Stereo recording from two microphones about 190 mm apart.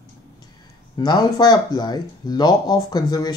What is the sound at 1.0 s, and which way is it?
Speech, 20° left (ahead or behind).